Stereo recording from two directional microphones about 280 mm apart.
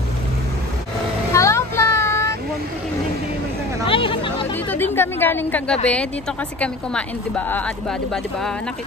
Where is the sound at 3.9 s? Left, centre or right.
Centre.